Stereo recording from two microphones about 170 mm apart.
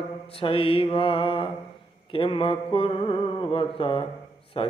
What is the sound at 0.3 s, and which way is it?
Mantra, 35° left (ahead or behind).